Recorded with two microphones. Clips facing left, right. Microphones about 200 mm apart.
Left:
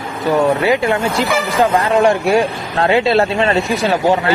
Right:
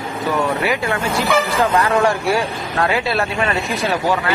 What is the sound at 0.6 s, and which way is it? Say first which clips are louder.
Speech: left 5 dB; 20° left (ahead or behind).